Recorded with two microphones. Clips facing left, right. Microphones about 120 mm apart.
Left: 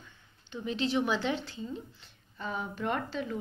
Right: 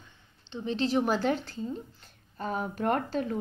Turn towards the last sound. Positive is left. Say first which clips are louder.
# right 5 dB
turn(degrees=-45)  # may be behind; listen again after turning